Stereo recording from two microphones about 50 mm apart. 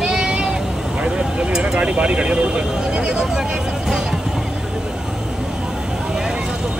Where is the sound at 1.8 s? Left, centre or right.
Right.